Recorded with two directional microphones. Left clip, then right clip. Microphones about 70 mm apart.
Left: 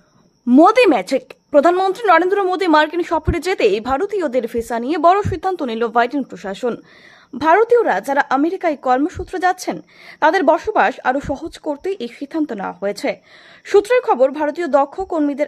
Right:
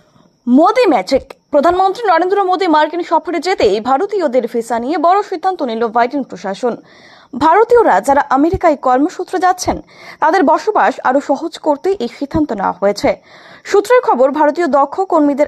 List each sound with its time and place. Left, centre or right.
0.6 s a woman's voice: centre
7.3 s a woman's voice: right